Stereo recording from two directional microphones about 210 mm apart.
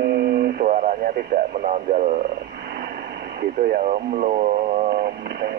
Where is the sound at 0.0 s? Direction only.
45° right (ahead or behind).